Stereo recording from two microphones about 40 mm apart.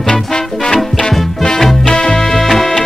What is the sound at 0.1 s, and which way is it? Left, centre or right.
Music, centre.